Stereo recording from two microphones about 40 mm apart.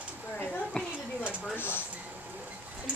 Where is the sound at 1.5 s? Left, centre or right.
Left.